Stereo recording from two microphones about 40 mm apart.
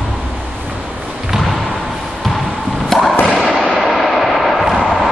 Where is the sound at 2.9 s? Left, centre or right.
Centre.